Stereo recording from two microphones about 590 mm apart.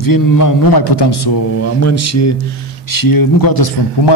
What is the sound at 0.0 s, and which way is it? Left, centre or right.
A man's voice, left.